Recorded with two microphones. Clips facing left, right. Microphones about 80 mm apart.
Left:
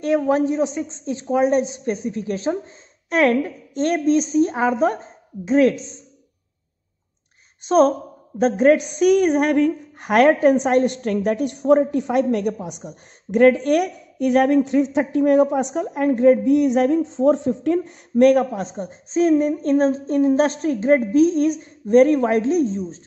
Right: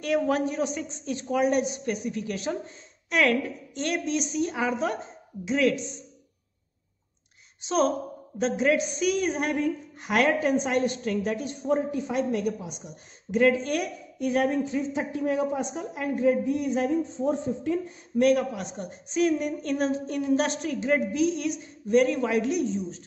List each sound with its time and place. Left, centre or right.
0.0 s a woman's voice: left
7.6 s a woman's voice: left